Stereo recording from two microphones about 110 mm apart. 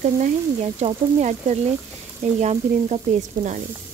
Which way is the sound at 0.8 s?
90° right.